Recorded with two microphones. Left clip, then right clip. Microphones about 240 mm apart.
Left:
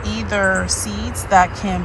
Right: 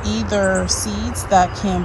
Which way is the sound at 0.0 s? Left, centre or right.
Centre.